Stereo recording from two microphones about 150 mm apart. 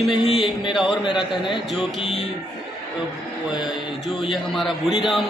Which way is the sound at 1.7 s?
Centre (ahead or behind).